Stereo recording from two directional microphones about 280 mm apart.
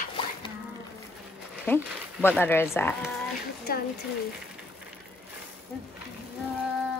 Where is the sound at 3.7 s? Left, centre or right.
Left.